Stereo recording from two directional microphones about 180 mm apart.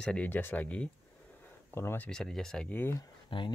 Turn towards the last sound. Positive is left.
turn(degrees=30)  # may be behind; listen again after turning